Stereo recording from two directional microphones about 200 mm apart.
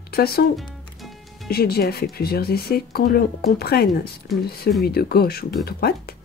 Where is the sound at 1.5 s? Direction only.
50° left (ahead or behind).